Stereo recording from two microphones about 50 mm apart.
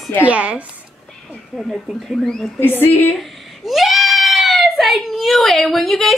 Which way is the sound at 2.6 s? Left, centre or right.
Left.